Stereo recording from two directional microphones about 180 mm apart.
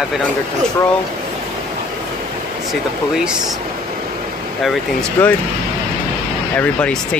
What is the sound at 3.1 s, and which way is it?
Speech, 5° right (ahead or behind).